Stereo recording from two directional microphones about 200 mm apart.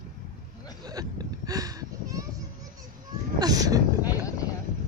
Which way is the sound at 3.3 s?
20° right (ahead or behind).